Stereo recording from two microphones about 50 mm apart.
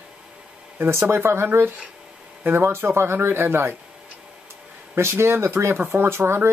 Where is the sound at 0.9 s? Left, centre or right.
Right.